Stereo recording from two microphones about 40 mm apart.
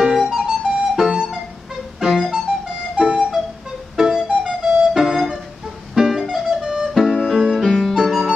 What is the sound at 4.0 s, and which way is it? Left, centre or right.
Music, centre.